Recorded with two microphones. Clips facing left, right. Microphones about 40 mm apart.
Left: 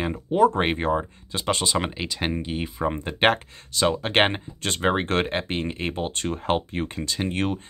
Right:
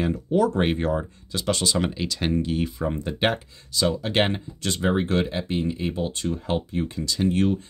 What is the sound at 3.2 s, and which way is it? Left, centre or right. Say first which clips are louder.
Speech: left 5 dB; left.